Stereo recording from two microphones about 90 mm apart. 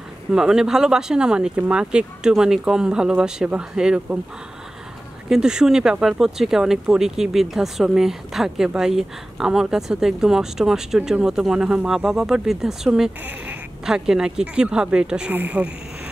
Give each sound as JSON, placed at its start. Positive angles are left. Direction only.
{"t": 0.3, "sound": "speech", "side_deg": -5}
{"t": 5.3, "sound": "speech", "side_deg": -5}
{"t": 13.2, "sound": "speech", "side_deg": -20}
{"t": 13.8, "sound": "speech", "side_deg": -5}